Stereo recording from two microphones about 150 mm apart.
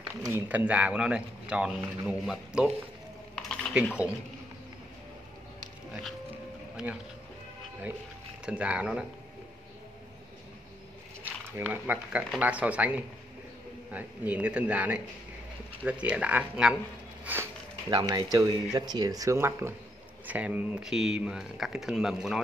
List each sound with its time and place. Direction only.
0.1 s speech: 15° right (ahead or behind)
3.3 s a sound: 5° left (ahead or behind)
8.5 s speech: 10° right (ahead or behind)
11.5 s speech: 10° right (ahead or behind)